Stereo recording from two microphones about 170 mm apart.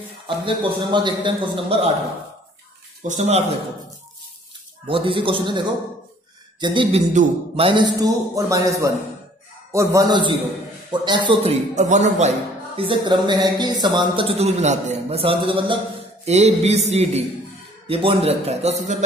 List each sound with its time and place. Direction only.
0.5 s a man's voice: 25° right (ahead or behind)
3.1 s speech: 40° right (ahead or behind)
4.8 s speech: 30° right (ahead or behind)
7.6 s a man's voice: 25° right (ahead or behind)
11.7 s speech: 45° right (ahead or behind)